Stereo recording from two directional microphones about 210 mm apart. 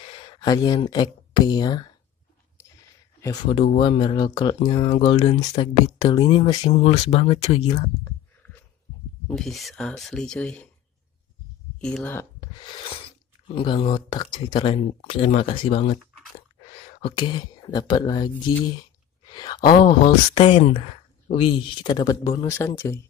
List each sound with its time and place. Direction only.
0.1 s speech: 20° left (ahead or behind)
3.2 s speech: 20° left (ahead or behind)
8.0 s a sound: 10° left (ahead or behind)
9.3 s speech: centre (ahead or behind)
11.8 s speech: 5° left (ahead or behind)
12.5 s speech: 25° left (ahead or behind)
19.2 s a sound: 20° left (ahead or behind)
19.6 s speech: 45° left (ahead or behind)
19.9 s speech: 25° left (ahead or behind)